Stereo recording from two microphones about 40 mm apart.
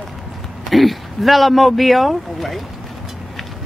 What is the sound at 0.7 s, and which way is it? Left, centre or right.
A woman's voice, centre.